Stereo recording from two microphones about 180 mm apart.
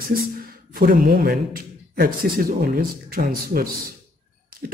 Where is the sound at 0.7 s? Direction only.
50° right (ahead or behind).